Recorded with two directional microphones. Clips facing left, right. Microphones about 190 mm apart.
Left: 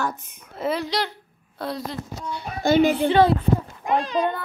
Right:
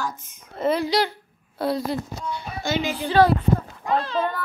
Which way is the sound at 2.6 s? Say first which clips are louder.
Left 9 dB; 55° left (ahead or behind).